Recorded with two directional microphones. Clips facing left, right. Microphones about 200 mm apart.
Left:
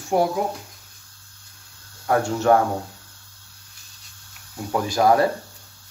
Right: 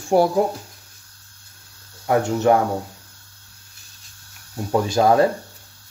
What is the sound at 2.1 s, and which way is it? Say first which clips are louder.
Speech: right 2 dB; 20° right (ahead or behind).